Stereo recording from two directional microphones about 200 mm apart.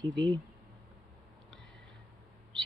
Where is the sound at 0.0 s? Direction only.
65° right (ahead or behind).